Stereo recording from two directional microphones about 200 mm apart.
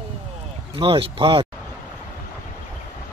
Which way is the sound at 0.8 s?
25° right (ahead or behind).